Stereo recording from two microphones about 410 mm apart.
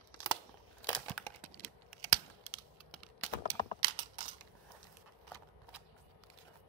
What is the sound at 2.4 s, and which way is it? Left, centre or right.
Computer keyboard, centre.